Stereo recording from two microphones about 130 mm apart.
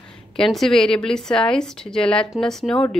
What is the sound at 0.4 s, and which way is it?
A woman's voice, centre (ahead or behind).